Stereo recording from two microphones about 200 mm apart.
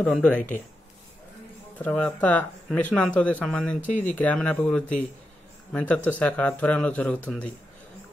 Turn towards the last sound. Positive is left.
turn(degrees=5)  # may be behind; listen again after turning